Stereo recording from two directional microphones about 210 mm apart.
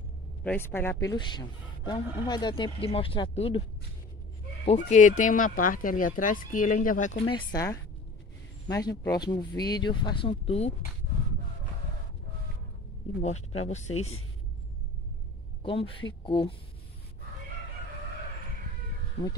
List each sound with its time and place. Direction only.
0.4 s speech: 10° left (ahead or behind); by 3.6 s 25° left (ahead or behind)
4.6 s speech: 35° left (ahead or behind)
13.2 s speech: 30° left (ahead or behind)
15.6 s speech: 25° left (ahead or behind)